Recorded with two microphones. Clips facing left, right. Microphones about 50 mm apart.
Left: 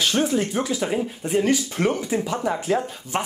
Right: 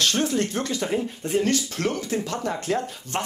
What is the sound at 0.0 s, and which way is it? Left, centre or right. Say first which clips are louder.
Speech: left 2 dB; centre.